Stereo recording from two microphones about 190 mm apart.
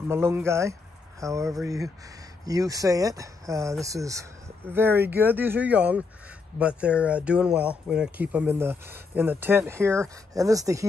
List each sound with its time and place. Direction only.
0.1 s speech: 15° right (ahead or behind)